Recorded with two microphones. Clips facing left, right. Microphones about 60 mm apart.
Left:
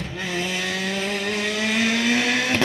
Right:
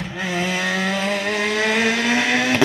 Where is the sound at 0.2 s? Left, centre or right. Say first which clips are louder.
Right 4 dB; right.